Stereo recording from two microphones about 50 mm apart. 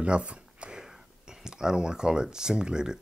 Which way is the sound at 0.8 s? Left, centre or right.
Centre.